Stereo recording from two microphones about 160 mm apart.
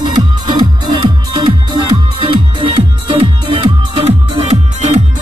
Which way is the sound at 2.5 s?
35° right (ahead or behind).